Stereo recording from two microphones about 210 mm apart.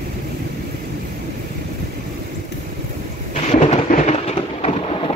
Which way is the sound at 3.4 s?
30° left (ahead or behind).